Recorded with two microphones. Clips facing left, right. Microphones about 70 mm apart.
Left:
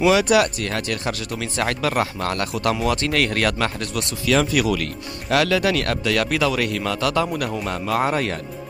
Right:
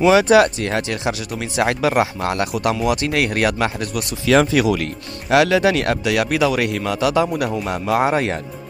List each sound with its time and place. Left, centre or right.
0.0 s speech: right; by 4.1 s centre
4.3 s speech: right